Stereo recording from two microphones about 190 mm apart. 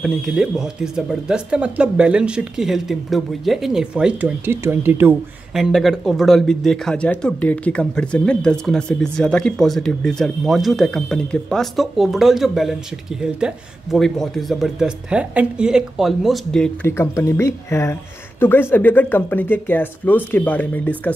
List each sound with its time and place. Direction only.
0.0 s speech: centre (ahead or behind)
13.9 s speech: centre (ahead or behind)